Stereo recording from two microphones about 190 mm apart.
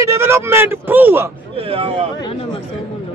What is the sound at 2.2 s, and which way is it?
Speech, 30° left (ahead or behind).